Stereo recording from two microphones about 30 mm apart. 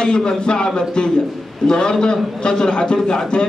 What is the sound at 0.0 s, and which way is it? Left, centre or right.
A man's voice, left.